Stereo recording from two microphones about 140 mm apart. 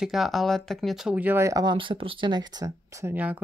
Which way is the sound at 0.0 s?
Centre (ahead or behind).